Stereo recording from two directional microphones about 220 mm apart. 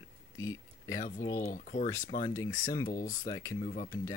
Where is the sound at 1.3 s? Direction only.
40° left (ahead or behind).